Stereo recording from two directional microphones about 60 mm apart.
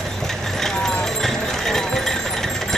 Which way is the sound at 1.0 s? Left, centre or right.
Centre.